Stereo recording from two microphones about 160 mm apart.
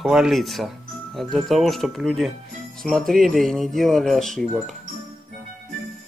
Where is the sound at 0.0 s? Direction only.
Centre (ahead or behind).